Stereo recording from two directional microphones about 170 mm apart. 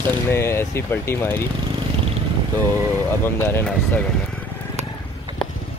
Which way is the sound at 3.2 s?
10° left (ahead or behind).